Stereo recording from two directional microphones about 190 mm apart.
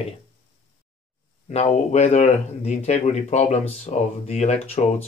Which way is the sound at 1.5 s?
35° left (ahead or behind).